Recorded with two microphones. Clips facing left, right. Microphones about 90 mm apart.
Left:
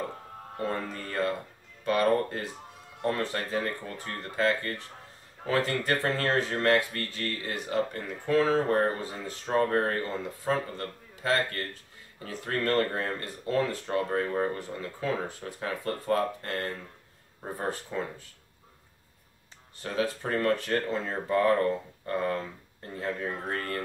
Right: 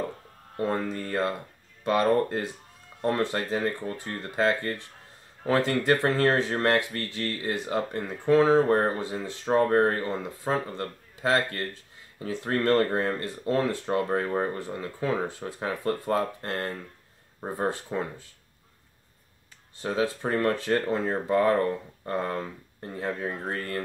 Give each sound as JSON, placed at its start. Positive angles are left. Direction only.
{"t": 0.6, "sound": "speech", "side_deg": -25}
{"t": 19.8, "sound": "speech", "side_deg": -25}